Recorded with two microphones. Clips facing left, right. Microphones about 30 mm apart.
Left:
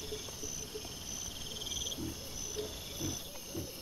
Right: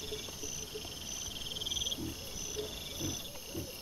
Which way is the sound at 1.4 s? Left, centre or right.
Centre.